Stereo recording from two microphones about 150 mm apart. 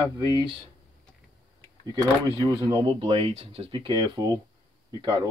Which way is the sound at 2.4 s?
30° right (ahead or behind).